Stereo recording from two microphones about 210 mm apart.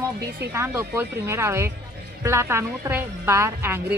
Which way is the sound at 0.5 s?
10° right (ahead or behind).